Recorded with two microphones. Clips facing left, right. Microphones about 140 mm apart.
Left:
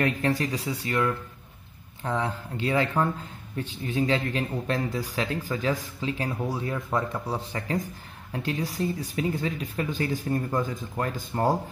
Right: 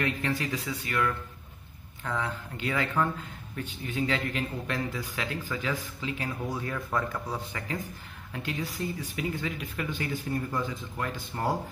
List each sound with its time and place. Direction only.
0.0 s speech: 40° left (ahead or behind)